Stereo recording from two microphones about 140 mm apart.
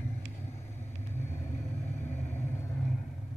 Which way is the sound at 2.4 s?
20° left (ahead or behind).